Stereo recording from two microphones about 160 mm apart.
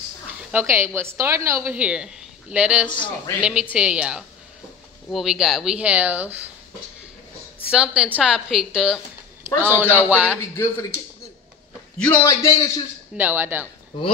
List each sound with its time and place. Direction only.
0.5 s a woman's voice: 15° right (ahead or behind)
7.7 s a woman's voice: 5° right (ahead or behind)
10.5 s speech: 15° left (ahead or behind)
12.0 s speech: 10° left (ahead or behind)
12.3 s a man's voice: 20° left (ahead or behind)
13.1 s a woman's voice: 10° right (ahead or behind)